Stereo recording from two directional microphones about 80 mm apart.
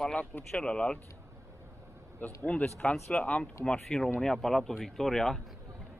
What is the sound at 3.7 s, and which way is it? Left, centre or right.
Speech, centre.